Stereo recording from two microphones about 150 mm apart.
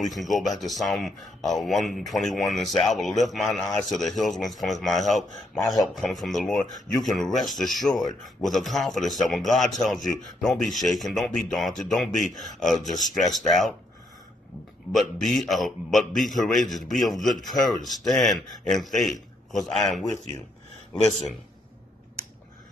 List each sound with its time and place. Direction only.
0.0 s speech: centre (ahead or behind)
12.7 s speech: 55° left (ahead or behind)
13.3 s speech: centre (ahead or behind)
14.9 s speech: centre (ahead or behind)